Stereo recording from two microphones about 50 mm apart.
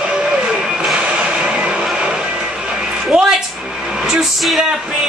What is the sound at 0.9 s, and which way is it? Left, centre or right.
Vehicle, right.